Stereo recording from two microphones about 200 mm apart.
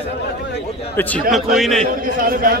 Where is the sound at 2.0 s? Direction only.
45° right (ahead or behind).